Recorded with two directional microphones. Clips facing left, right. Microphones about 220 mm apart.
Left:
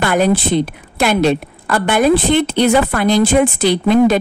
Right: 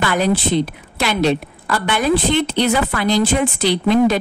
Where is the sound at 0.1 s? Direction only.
50° left (ahead or behind).